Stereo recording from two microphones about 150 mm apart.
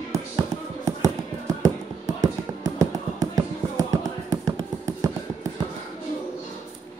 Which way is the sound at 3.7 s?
20° right (ahead or behind).